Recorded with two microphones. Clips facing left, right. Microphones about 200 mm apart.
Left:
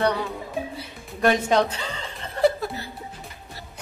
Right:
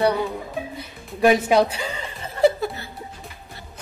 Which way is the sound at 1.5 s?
10° right (ahead or behind).